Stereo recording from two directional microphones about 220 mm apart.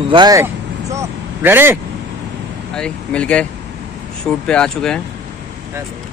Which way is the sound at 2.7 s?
5° left (ahead or behind).